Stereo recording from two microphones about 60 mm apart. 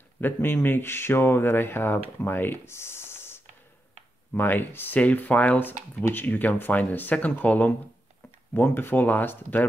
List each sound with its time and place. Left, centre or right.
0.2 s speech: left
4.4 s speech: left